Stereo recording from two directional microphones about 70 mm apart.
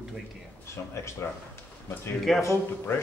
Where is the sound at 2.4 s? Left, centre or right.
Left.